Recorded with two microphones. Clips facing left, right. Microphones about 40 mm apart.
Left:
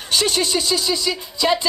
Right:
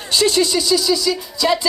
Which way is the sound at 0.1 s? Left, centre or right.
Left.